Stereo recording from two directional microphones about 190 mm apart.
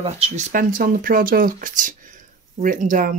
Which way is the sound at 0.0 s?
35° right (ahead or behind).